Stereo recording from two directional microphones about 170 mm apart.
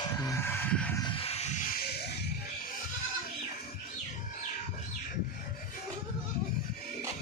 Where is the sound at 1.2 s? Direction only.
40° left (ahead or behind).